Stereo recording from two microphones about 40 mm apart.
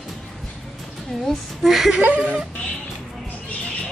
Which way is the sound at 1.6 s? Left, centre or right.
Centre.